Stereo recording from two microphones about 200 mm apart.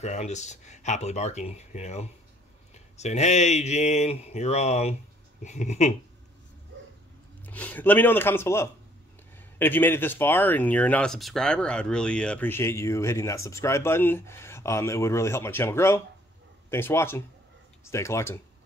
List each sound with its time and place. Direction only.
0.0 s speech: 35° left (ahead or behind)
7.4 s speech: 10° left (ahead or behind)